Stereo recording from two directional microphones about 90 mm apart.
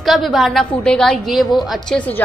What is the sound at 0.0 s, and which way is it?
A woman's voice, centre (ahead or behind).